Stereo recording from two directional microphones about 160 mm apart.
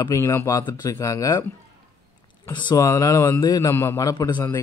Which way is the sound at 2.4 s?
25° left (ahead or behind).